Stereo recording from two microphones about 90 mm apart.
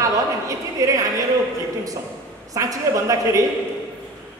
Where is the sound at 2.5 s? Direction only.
40° right (ahead or behind).